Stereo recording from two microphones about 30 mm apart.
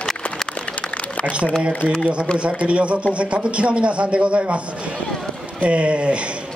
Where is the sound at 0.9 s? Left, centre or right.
Left.